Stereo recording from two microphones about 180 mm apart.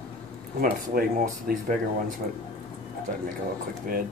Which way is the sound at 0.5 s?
55° right (ahead or behind).